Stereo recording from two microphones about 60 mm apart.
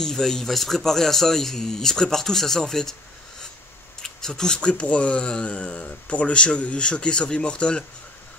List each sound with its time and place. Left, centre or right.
0.0 s speech: centre
4.0 s speech: centre